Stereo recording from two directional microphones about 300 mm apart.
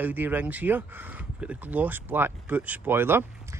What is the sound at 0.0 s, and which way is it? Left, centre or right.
Speech, centre.